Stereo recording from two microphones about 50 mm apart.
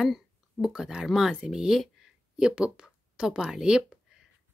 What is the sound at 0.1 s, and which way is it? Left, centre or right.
Speech, centre.